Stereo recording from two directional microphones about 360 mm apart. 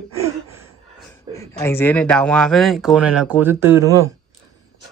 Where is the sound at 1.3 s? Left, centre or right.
Centre.